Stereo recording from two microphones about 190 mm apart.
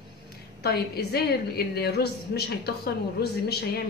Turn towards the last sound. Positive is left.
turn(degrees=55)  # may be behind; listen again after turning